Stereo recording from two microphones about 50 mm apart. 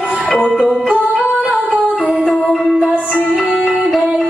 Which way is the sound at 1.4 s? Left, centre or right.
Right.